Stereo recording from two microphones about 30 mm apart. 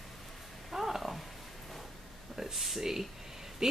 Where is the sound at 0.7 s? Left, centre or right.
Centre.